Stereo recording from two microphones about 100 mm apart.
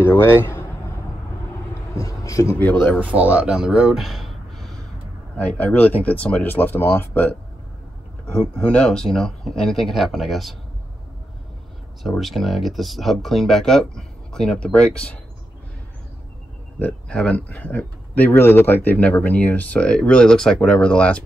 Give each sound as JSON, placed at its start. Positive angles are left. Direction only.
{"t": 0.0, "sound": "speech", "side_deg": 25}
{"t": 1.7, "sound": "a sound", "side_deg": 35}
{"t": 2.6, "sound": "speech", "side_deg": 15}
{"t": 3.0, "sound": "speech", "side_deg": -15}
{"t": 5.4, "sound": "speech", "side_deg": 15}
{"t": 8.6, "sound": "speech", "side_deg": 5}
{"t": 12.0, "sound": "speech", "side_deg": 0}
{"t": 16.8, "sound": "speech", "side_deg": 10}